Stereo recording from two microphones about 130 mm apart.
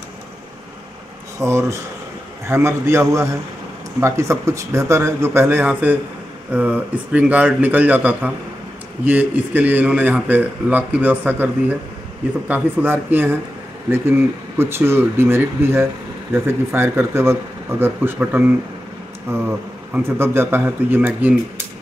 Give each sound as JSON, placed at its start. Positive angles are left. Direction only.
{"t": 1.4, "sound": "a man's voice", "side_deg": -20}
{"t": 14.6, "sound": "a man's voice", "side_deg": -20}